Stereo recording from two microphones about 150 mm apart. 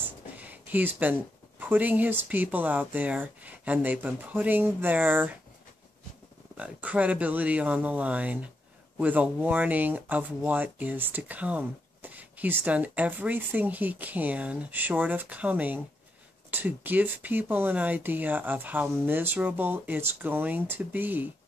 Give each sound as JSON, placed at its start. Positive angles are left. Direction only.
{"t": 0.0, "sound": "a sound", "side_deg": -10}
{"t": 1.6, "sound": "speech", "side_deg": -10}
{"t": 6.5, "sound": "speech", "side_deg": -10}